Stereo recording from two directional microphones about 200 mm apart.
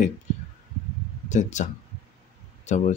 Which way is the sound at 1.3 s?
40° left (ahead or behind).